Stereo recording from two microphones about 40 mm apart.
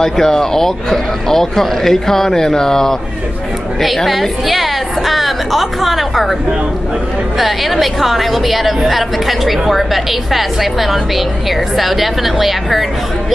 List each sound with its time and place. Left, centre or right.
0.0 s speech: centre
3.8 s a woman's voice: centre
7.3 s a woman's voice: centre